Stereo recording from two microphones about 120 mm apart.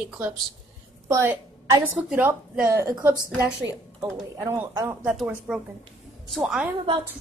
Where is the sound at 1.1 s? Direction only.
20° right (ahead or behind).